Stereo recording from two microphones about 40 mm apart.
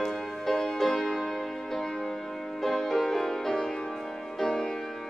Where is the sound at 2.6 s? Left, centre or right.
Centre.